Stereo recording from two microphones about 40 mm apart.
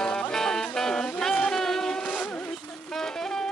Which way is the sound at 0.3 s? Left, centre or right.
Centre.